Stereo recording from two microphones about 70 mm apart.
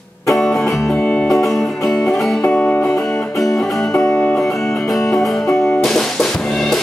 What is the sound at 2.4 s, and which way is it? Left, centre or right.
Music, centre.